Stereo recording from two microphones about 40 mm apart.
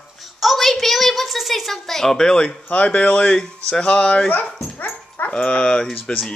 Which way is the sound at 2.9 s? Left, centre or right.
Left.